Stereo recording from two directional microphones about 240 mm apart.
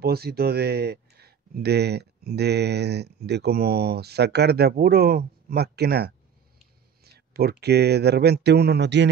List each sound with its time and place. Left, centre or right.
0.0 s speech: right
7.3 s speech: right